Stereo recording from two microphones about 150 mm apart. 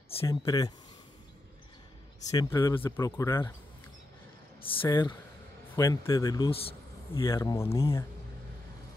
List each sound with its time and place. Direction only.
0.3 s speech: 25° left (ahead or behind)
2.3 s speech: 20° left (ahead or behind)
4.6 s speech: 35° left (ahead or behind)
6.5 s a sound: 40° left (ahead or behind)
7.2 s speech: 20° left (ahead or behind)